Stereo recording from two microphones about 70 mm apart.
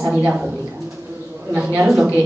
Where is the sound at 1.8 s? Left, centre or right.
Centre.